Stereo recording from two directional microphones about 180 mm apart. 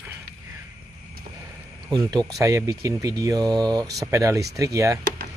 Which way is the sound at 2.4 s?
15° right (ahead or behind).